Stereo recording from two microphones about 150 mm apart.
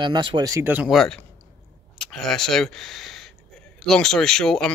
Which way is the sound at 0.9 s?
5° left (ahead or behind).